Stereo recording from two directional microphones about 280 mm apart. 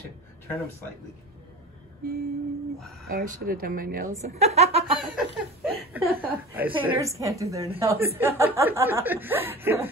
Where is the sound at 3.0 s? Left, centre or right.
Right.